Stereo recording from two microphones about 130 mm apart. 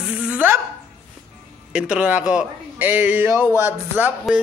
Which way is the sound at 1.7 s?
5° right (ahead or behind).